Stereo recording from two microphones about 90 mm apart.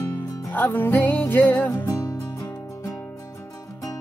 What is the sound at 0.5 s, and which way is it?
Music, 20° left (ahead or behind).